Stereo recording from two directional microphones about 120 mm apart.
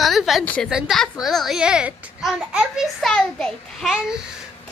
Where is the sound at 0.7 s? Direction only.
Centre (ahead or behind).